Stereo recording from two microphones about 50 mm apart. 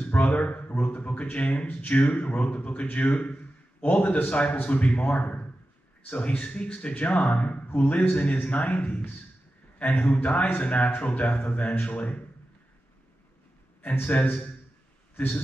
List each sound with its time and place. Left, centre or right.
0.0 s a man's voice: left
13.8 s a man's voice: left